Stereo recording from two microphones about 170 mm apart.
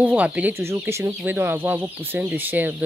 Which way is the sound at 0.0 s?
5° right (ahead or behind).